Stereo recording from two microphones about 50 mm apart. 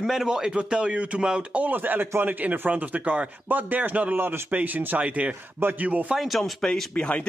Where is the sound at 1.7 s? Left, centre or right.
Right.